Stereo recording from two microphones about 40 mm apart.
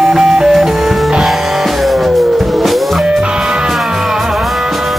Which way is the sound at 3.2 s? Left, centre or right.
Centre.